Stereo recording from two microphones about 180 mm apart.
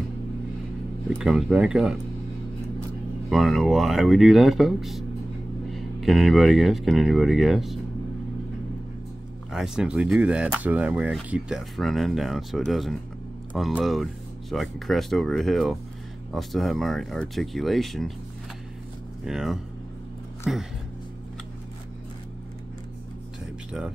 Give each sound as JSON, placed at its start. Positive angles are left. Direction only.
{"t": 1.1, "sound": "speech", "side_deg": 0}
{"t": 3.3, "sound": "speech", "side_deg": 0}
{"t": 9.5, "sound": "speech", "side_deg": -5}
{"t": 19.2, "sound": "speech", "side_deg": 0}